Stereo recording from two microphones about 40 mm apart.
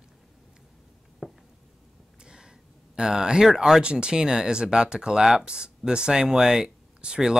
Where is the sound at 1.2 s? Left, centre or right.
Centre.